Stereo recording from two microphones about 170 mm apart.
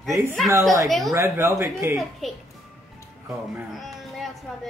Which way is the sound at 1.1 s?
15° right (ahead or behind).